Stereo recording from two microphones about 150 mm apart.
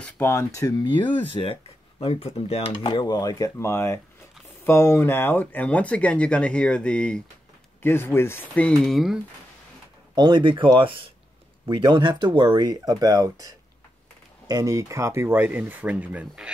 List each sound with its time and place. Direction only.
0.2 s speech: 15° left (ahead or behind)
0.6 s speech: 25° left (ahead or behind); by 2.7 s 45° left (ahead or behind)
2.8 s speech: 30° left (ahead or behind); by 9.2 s centre (ahead or behind)
10.1 s speech: 30° right (ahead or behind); by 16.4 s 10° right (ahead or behind)